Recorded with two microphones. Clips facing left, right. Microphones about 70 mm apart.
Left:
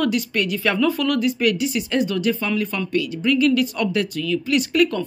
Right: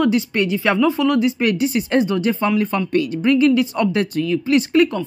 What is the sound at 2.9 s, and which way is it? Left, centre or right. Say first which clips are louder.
A woman's voice: right 3 dB; right.